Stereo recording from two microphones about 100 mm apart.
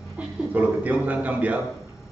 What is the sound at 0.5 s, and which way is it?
A man's voice, 15° right (ahead or behind).